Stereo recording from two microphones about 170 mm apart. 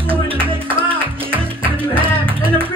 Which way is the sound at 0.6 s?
30° right (ahead or behind).